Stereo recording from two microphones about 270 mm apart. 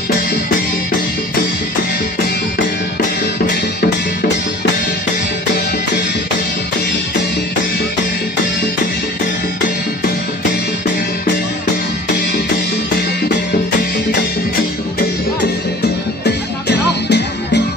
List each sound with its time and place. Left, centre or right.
16.3 s music: left